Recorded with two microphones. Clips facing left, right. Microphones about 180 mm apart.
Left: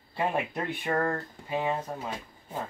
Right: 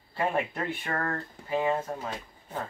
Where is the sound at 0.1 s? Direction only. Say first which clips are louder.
Even; 15° left (ahead or behind).